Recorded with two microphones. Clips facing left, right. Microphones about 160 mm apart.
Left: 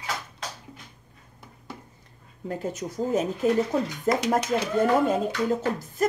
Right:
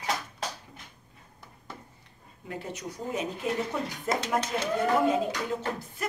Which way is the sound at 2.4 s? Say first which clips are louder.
Left 6 dB; 45° left (ahead or behind).